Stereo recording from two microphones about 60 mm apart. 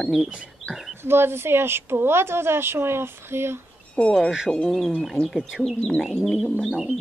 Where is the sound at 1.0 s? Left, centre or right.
Right.